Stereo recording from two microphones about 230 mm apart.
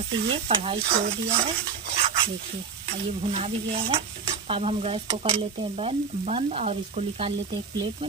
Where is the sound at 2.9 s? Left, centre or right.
Right.